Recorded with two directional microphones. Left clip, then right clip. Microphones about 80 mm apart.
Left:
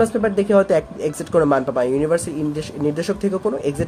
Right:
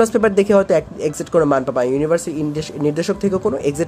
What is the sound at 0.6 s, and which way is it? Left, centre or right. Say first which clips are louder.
Speech: right 1 dB; right.